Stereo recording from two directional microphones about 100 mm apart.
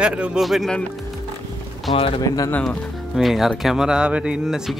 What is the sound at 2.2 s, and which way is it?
Speech, 35° left (ahead or behind).